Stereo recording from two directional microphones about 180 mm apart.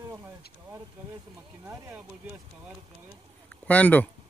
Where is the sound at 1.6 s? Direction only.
15° right (ahead or behind).